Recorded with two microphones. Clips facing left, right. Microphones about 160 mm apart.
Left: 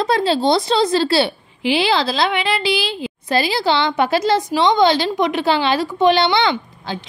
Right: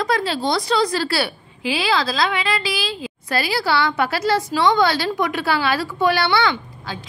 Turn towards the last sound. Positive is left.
turn(degrees=20)  # may be behind; listen again after turning